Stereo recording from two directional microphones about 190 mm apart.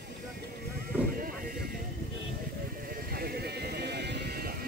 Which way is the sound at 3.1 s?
55° right (ahead or behind).